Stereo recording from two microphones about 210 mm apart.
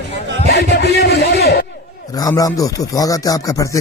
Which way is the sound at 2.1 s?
20° left (ahead or behind).